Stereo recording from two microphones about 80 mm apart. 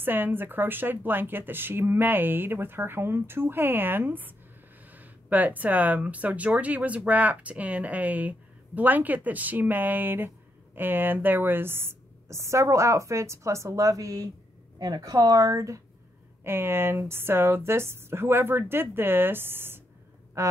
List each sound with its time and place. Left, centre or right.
0.0 s speech: right
16.4 s speech: right
20.4 s a sound: right